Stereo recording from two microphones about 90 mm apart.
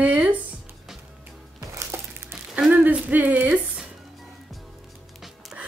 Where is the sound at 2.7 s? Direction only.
15° right (ahead or behind).